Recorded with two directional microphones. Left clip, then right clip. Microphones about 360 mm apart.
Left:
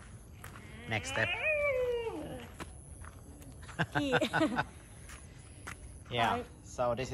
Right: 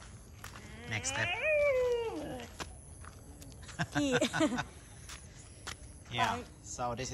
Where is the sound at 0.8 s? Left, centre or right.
Centre.